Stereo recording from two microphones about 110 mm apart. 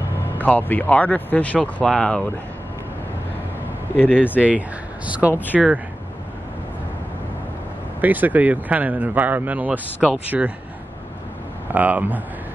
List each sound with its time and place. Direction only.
0.4 s speech: 15° left (ahead or behind)
4.4 s speech: 10° right (ahead or behind)
5.3 s speech: 15° left (ahead or behind)
8.0 s speech: 15° right (ahead or behind)
11.7 s speech: 15° right (ahead or behind)